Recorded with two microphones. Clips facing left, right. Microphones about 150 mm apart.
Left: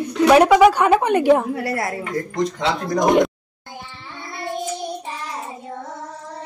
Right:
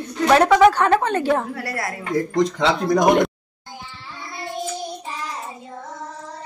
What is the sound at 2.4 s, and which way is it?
Speech, 90° right.